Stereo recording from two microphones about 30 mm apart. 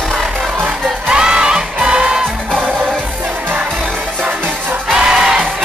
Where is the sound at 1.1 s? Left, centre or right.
Right.